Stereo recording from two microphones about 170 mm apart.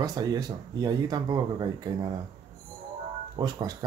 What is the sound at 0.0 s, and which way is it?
Speech, 20° right (ahead or behind).